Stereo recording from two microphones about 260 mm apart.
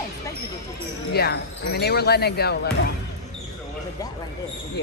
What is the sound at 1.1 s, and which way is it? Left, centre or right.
Speech, left.